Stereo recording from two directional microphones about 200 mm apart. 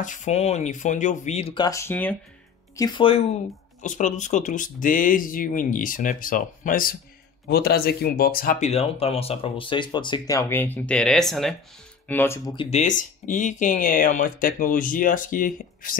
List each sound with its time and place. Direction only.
0.0 s speech: 40° left (ahead or behind); by 2.1 s 10° left (ahead or behind)
2.7 s speech: 20° left (ahead or behind)
3.8 s speech: 40° left (ahead or behind); by 12.5 s 10° left (ahead or behind)
12.5 s speech: 35° left (ahead or behind)